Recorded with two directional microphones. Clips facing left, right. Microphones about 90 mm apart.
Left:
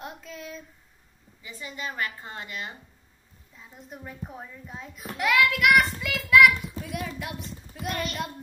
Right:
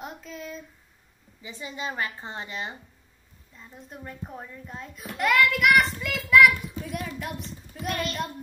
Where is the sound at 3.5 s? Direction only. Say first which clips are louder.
Even; 5° left (ahead or behind).